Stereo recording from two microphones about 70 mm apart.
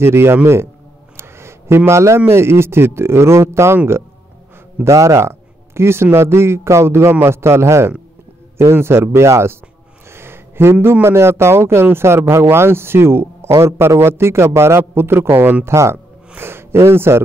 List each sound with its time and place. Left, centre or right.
0.0 s a man's voice: right
1.1 s a sound: right
1.9 s a man's voice: right